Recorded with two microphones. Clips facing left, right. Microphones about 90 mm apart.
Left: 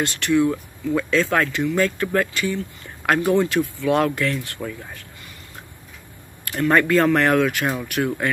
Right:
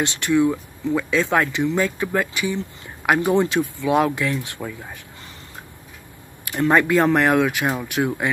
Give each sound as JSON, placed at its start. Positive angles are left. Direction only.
{"t": 0.0, "sound": "speech", "side_deg": -20}
{"t": 6.7, "sound": "speech", "side_deg": -15}